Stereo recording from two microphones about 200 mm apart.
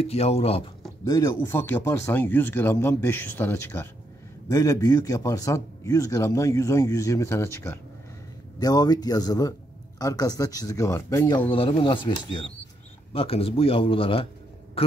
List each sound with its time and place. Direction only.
0.0 s speech: 30° left (ahead or behind)
1.0 s a man's voice: 15° left (ahead or behind)
13.1 s speech: 30° left (ahead or behind)